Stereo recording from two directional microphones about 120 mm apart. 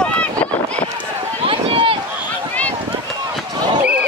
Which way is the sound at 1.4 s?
45° right (ahead or behind).